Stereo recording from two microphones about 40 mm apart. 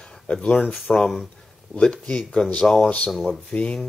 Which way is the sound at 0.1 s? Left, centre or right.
Centre.